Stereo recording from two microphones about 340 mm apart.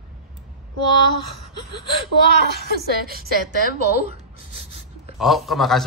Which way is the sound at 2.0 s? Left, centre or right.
Right.